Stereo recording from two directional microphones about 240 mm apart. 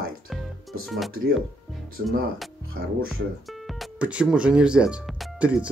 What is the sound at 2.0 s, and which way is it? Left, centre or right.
Speech, right.